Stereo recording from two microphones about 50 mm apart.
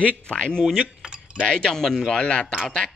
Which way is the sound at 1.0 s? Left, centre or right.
Centre.